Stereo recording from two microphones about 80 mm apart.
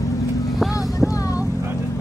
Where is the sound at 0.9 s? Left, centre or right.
Left.